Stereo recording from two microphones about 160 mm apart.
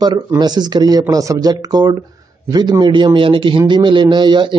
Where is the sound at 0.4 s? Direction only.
25° right (ahead or behind).